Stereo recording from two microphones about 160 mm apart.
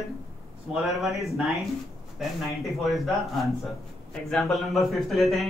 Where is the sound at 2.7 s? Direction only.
Centre (ahead or behind).